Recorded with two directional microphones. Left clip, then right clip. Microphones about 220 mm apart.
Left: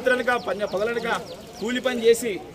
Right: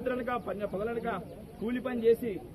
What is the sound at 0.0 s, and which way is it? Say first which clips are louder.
A man's voice: left 11 dB; 15° left (ahead or behind).